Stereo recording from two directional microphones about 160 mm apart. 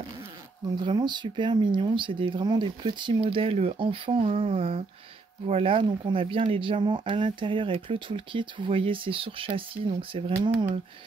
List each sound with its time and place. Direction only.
0.7 s speech: 30° right (ahead or behind)